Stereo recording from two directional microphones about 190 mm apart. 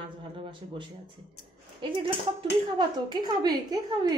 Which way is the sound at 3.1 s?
20° right (ahead or behind).